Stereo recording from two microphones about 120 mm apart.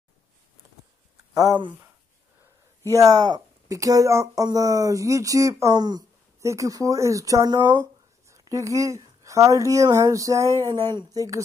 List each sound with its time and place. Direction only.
1.3 s speech: 30° right (ahead or behind)
2.8 s speech: 30° right (ahead or behind)